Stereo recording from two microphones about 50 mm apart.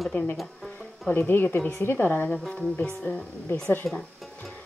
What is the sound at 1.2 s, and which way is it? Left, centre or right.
A woman's voice, left.